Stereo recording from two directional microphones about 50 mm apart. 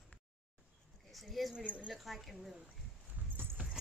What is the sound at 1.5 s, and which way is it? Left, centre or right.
Speech, right.